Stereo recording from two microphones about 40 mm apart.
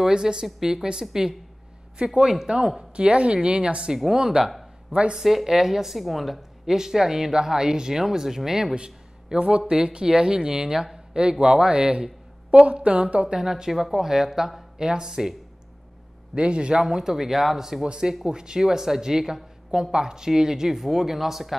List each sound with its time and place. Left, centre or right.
0.0 s speech: centre
3.0 s speech: right
5.1 s a woman's voice: centre
6.6 s speech: centre
8.7 s a man's voice: right
12.4 s a sound: right
12.8 s speech: right
13.4 s speech: centre
16.3 s speech: right
16.8 s speech: centre
17.8 s speech: centre